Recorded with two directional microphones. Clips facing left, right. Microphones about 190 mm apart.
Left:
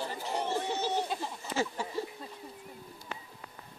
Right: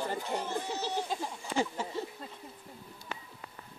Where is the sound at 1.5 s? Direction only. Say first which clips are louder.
Right 1 dB; 20° right (ahead or behind).